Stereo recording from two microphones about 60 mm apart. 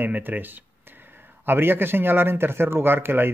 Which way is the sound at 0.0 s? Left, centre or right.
Right.